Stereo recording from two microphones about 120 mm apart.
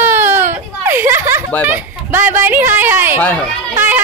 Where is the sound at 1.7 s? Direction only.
15° right (ahead or behind).